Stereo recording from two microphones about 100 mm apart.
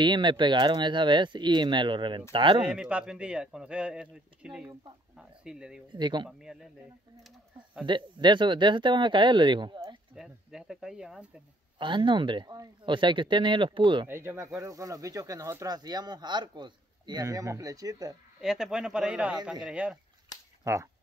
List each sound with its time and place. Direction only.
0.0 s speech: 50° right (ahead or behind)
2.7 s speech: 10° right (ahead or behind)
5.1 s a sound: 5° right (ahead or behind)
5.9 s speech: 50° right (ahead or behind)
6.2 s a man's voice: 5° right (ahead or behind)
7.8 s speech: 50° right (ahead or behind)
10.1 s speech: 5° right (ahead or behind)
11.8 s speech: 55° right (ahead or behind)
14.0 s speech: 25° right (ahead or behind)
18.4 s speech: 5° right (ahead or behind)
20.6 s speech: 30° right (ahead or behind)